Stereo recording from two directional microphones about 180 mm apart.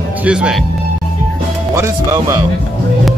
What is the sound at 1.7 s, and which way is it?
Speech, 15° right (ahead or behind).